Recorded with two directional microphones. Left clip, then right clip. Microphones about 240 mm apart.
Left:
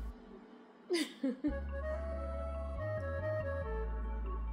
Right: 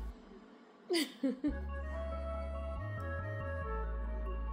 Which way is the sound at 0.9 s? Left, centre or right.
Right.